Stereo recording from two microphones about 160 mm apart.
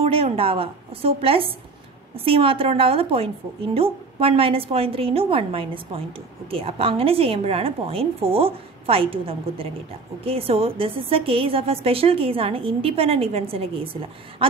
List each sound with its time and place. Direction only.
0.0 s speech: 35° right (ahead or behind)